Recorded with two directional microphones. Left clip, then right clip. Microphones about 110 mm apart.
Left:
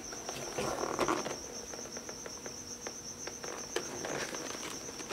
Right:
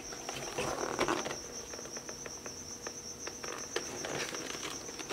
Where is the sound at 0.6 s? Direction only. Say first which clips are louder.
Left 1 dB; 5° right (ahead or behind).